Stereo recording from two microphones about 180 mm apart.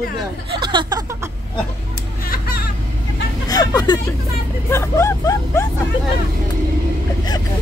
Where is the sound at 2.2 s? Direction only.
55° left (ahead or behind).